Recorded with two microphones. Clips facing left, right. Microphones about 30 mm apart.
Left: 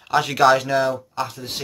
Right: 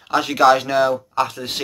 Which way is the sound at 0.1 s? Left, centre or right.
Centre.